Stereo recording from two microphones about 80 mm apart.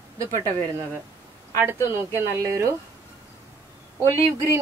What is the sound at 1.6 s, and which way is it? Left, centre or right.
A woman's voice, right.